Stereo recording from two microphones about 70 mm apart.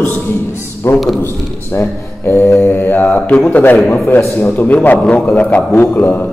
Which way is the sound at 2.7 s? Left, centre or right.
Left.